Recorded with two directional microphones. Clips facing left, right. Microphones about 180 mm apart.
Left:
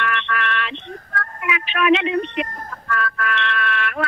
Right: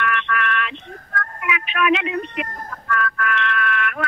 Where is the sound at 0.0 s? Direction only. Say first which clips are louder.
Right 1 dB; 30° left (ahead or behind).